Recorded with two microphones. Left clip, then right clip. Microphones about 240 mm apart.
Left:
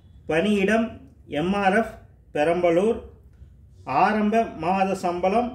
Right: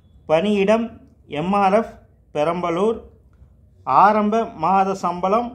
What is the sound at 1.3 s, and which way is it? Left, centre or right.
Speech, centre.